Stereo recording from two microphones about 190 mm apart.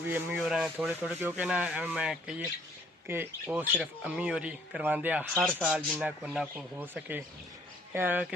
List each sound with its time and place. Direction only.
0.1 s speech: 5° right (ahead or behind)
5.4 s speech: 5° left (ahead or behind)
5.7 s speech: 5° right (ahead or behind)